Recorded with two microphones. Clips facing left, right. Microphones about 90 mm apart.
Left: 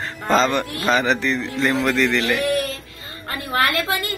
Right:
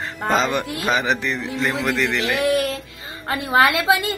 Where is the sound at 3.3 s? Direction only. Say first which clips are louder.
Right 4 dB; 20° right (ahead or behind).